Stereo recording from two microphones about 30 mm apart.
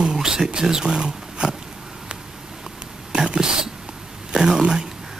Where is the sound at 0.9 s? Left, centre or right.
Right.